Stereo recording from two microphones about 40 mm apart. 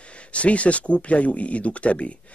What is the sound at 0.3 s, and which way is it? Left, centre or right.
A man's voice, left.